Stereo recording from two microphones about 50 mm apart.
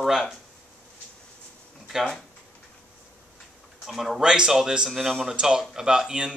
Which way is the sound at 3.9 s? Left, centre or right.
Centre.